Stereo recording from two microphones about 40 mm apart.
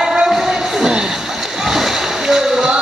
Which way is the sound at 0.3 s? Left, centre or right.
Centre.